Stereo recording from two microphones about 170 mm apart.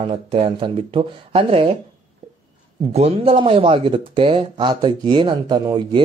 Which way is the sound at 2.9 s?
35° right (ahead or behind).